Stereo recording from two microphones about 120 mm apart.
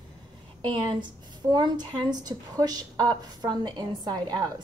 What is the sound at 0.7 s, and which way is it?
A woman's voice, 35° right (ahead or behind).